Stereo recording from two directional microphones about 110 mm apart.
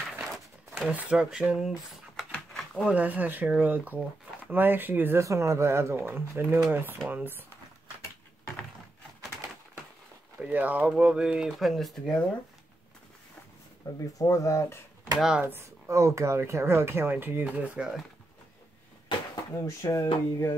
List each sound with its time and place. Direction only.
0.2 s a sound: centre (ahead or behind)
0.9 s speech: 10° right (ahead or behind)
1.9 s typing: centre (ahead or behind)
2.8 s speech: 15° right (ahead or behind)
10.4 s speech: 15° right (ahead or behind); by 12.3 s 5° left (ahead or behind)
14.1 s speech: 30° left (ahead or behind)
15.1 s speech: 5° right (ahead or behind)
15.4 s speech: 25° right (ahead or behind); by 18.0 s 5° right (ahead or behind)
19.5 s speech: 30° left (ahead or behind)